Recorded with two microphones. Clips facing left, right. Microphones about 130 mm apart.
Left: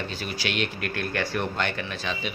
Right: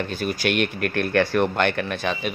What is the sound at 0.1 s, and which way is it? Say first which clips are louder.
Speech: right 7 dB; 50° right (ahead or behind).